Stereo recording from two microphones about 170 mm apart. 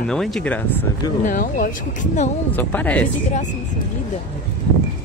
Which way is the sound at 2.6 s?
10° left (ahead or behind).